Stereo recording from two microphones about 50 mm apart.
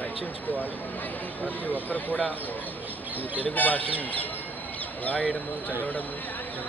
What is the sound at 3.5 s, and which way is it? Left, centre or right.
Speech, left.